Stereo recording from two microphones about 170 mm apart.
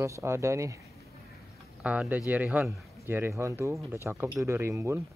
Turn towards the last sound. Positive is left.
turn(degrees=-15)  # may be behind; listen again after turning